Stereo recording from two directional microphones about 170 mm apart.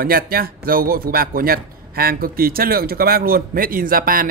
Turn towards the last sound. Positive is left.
turn(degrees=-60)  # may be behind; listen again after turning